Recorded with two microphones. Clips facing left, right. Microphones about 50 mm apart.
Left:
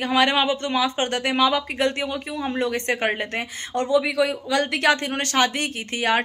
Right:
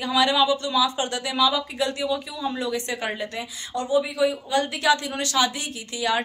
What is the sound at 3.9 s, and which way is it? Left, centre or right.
A woman's voice, left.